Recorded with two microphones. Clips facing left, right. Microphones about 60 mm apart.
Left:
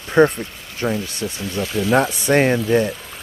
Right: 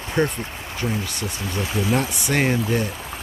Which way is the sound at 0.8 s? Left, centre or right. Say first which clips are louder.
Left 5 dB; left.